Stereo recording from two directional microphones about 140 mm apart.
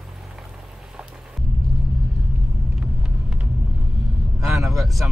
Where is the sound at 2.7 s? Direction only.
5° right (ahead or behind).